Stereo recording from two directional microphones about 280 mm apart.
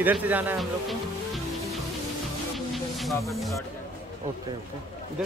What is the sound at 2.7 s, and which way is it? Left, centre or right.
Snake, centre.